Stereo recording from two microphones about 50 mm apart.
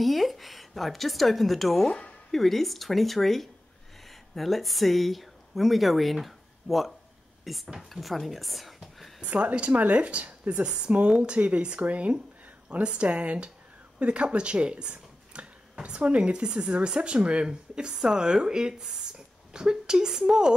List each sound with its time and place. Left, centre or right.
0.0 s a woman's voice: centre
1.9 s speech: left
2.3 s a woman's voice: centre
9.2 s speech: right
11.3 s a woman's voice: right